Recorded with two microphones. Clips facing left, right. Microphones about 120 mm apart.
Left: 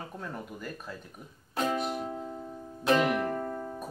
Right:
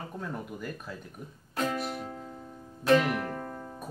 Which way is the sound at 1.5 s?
20° left (ahead or behind).